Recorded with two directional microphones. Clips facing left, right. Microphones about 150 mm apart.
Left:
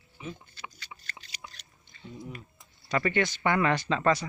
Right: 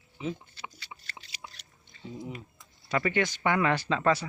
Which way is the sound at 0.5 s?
25° right (ahead or behind).